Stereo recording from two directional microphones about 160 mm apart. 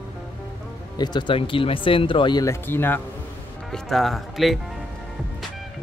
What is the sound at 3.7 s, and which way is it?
Speech, centre (ahead or behind).